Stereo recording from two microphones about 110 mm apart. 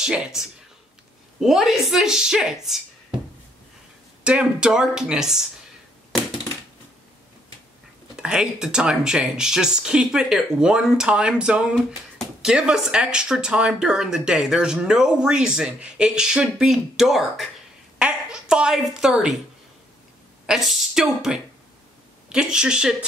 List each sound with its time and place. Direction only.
0.0 s speech: 5° right (ahead or behind)
4.2 s speech: 10° right (ahead or behind)
8.2 s speech: 5° right (ahead or behind)
17.9 s a sound: 5° right (ahead or behind)
20.4 s speech: 5° right (ahead or behind)